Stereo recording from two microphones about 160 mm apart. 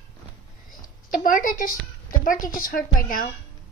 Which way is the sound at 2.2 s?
55° left (ahead or behind).